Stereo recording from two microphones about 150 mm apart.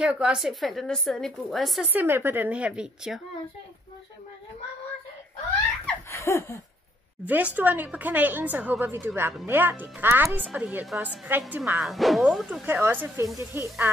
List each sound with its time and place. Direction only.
0.0 s a woman's voice: 5° right (ahead or behind)
1.9 s speech: 15° right (ahead or behind)
6.1 s a sound: 20° left (ahead or behind)
7.2 s speech: 10° right (ahead or behind)
11.8 s a woman's voice: centre (ahead or behind)
12.6 s speech: 15° right (ahead or behind)